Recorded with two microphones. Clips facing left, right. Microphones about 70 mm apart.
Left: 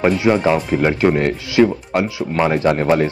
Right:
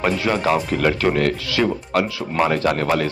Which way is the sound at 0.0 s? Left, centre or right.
Centre.